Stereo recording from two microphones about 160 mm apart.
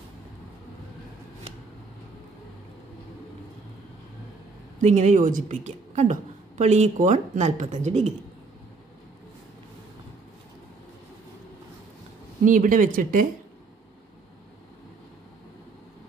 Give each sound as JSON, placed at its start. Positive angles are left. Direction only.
{"t": 4.8, "sound": "a woman's voice", "side_deg": -45}
{"t": 12.4, "sound": "speech", "side_deg": -55}